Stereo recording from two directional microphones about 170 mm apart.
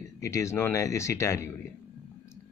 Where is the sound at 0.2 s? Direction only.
15° left (ahead or behind).